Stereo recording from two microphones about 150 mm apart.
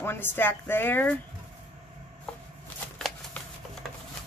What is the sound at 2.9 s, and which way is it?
Shuffling cards, 5° left (ahead or behind).